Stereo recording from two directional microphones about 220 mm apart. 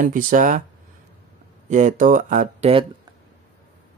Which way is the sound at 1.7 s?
35° right (ahead or behind).